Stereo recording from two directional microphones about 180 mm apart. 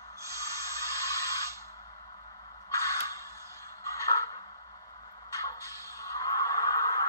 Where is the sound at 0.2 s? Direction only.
15° right (ahead or behind).